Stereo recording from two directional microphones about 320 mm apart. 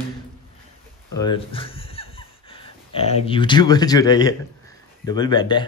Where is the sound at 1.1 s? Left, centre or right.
Centre.